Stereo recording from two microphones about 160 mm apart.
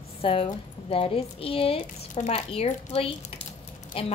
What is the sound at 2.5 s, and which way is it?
A woman's voice, 40° left (ahead or behind).